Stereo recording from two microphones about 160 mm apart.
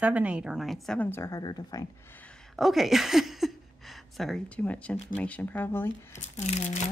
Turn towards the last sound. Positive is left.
turn(degrees=45)  # may be behind; listen again after turning